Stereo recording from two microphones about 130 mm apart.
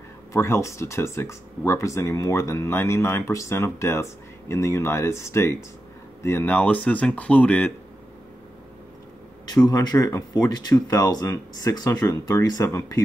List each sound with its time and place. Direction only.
0.3 s speech: 20° left (ahead or behind)
9.7 s speech: 25° left (ahead or behind)